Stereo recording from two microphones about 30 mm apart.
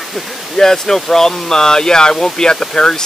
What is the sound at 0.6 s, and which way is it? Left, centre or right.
Speech, centre.